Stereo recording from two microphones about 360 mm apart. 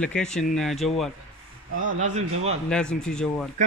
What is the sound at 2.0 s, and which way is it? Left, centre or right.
Speech, centre.